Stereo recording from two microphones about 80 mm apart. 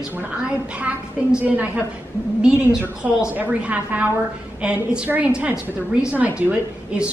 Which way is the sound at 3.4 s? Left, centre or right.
Centre.